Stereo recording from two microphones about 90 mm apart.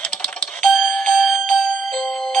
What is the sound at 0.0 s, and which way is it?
Doorbell, 15° left (ahead or behind).